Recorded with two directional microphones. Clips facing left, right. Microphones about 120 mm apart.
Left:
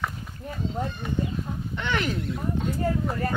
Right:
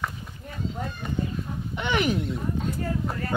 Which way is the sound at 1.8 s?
15° right (ahead or behind).